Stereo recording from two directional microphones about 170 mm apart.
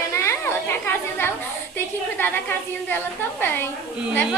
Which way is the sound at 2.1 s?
10° left (ahead or behind).